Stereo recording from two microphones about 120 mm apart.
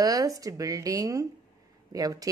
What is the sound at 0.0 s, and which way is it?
Speech, 30° right (ahead or behind).